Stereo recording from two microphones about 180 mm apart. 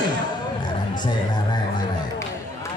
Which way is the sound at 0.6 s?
25° left (ahead or behind).